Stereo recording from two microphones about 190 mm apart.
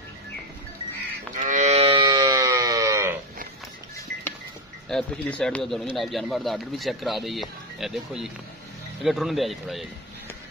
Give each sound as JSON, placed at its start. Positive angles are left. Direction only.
{"t": 1.4, "sound": "livestock", "side_deg": -40}
{"t": 4.8, "sound": "speech", "side_deg": 5}